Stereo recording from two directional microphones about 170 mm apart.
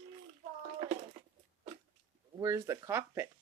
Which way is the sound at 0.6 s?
35° right (ahead or behind).